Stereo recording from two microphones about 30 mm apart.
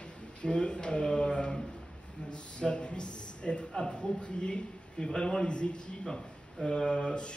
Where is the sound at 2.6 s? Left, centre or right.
Left.